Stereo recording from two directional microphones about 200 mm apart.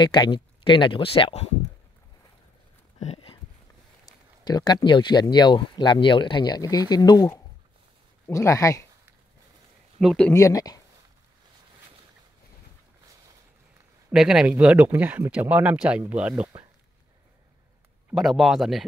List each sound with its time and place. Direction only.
0.0 s speech: 25° left (ahead or behind)
3.0 s a sound: 30° left (ahead or behind)
4.5 s speech: 20° left (ahead or behind)
9.9 s speech: centre (ahead or behind)
10.3 s speech: 15° left (ahead or behind)
14.1 s speech: 5° right (ahead or behind)
18.1 s speech: centre (ahead or behind)